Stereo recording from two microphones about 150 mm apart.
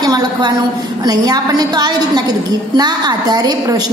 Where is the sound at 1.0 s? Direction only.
25° right (ahead or behind).